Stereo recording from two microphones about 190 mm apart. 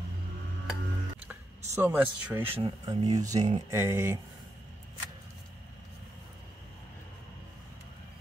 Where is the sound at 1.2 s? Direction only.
10° right (ahead or behind).